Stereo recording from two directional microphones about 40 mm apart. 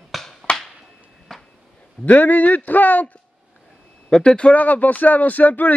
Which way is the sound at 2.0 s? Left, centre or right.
Left.